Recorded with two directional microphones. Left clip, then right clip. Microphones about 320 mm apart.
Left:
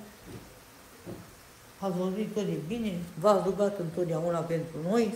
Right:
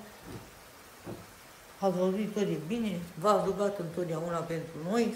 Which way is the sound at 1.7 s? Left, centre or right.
Centre.